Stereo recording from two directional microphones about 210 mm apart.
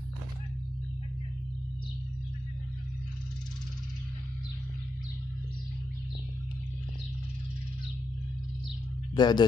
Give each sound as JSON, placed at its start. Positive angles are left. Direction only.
{"t": 9.1, "sound": "speech", "side_deg": 20}